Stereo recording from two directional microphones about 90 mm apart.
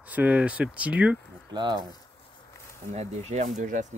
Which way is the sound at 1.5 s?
55° right (ahead or behind).